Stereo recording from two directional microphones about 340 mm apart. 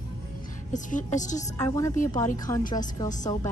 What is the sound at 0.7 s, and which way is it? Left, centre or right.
Speech, left.